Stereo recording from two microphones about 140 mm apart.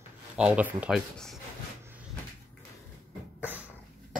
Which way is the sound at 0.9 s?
Centre (ahead or behind).